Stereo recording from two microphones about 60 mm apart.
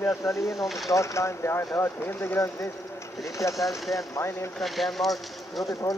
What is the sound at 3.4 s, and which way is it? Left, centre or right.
Speech, left.